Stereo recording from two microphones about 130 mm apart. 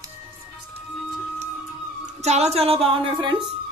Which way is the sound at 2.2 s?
55° right (ahead or behind).